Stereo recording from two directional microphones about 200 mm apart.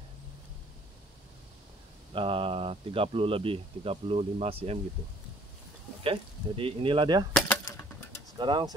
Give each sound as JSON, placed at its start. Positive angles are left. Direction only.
{"t": 2.1, "sound": "speech", "side_deg": -25}
{"t": 6.0, "sound": "speech", "side_deg": -25}
{"t": 8.4, "sound": "speech", "side_deg": -20}